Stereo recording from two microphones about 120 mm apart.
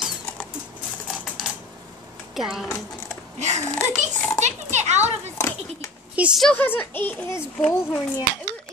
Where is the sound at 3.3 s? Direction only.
70° right (ahead or behind).